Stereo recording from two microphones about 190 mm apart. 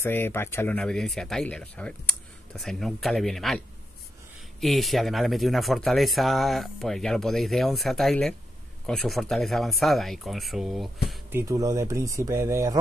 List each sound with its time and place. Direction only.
0.0 s speech: 10° left (ahead or behind)
11.3 s speech: 15° right (ahead or behind)